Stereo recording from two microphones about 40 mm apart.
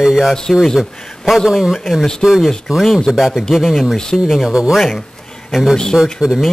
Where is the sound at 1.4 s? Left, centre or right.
Centre.